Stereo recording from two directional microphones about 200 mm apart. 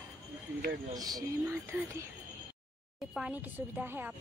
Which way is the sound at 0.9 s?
20° right (ahead or behind).